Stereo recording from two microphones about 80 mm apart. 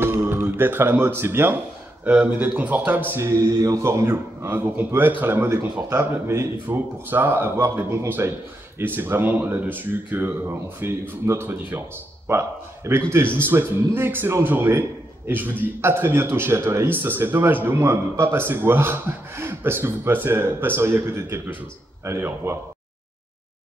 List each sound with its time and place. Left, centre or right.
0.0 s speech: right
3.4 s a man's voice: right